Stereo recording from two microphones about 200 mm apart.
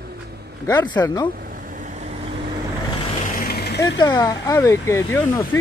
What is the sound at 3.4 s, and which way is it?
Vehicle, 50° left (ahead or behind).